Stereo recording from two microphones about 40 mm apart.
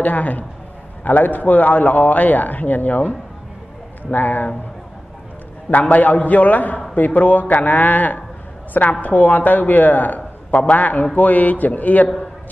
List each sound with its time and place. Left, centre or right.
0.0 s a man's voice: left
5.7 s a man's voice: left